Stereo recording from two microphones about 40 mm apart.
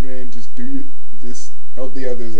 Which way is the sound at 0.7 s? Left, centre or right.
Centre.